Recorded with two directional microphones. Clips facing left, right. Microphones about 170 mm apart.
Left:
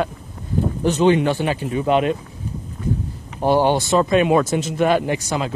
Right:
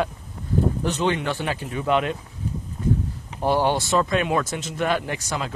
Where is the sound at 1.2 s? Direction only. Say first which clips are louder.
Left 6 dB; 30° left (ahead or behind).